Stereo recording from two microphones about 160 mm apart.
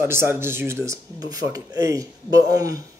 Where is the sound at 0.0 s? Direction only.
15° right (ahead or behind).